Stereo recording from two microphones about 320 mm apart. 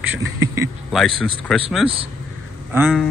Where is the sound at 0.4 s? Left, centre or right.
Centre.